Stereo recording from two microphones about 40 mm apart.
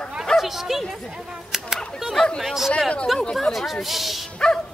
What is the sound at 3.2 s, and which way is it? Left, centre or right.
Speech, centre.